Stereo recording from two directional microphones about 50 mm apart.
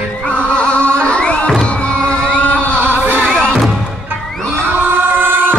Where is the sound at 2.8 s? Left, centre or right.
Right.